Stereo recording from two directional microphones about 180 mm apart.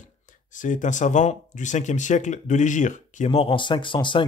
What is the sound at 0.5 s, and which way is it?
Speech, 45° left (ahead or behind).